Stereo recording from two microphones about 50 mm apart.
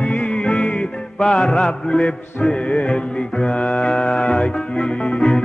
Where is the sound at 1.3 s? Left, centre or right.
Centre.